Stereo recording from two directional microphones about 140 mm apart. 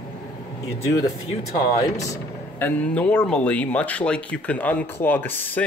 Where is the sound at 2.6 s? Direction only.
10° left (ahead or behind).